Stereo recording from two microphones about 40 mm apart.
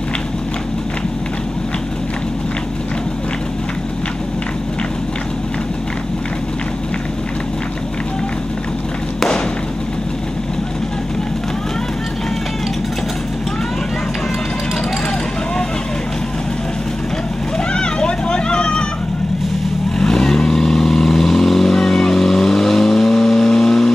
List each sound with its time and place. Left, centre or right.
17.7 s vehicle: left
20.0 s vehicle: centre